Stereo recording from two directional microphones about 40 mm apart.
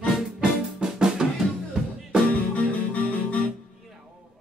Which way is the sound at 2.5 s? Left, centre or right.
Left.